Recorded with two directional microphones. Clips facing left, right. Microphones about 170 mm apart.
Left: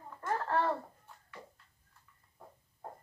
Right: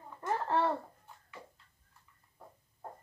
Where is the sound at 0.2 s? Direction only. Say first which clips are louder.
Right 1 dB; 20° right (ahead or behind).